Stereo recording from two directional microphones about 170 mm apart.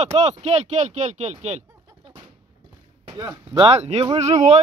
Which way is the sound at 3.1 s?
25° right (ahead or behind).